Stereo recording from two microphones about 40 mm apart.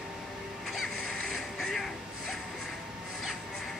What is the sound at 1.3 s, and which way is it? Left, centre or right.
Music, centre.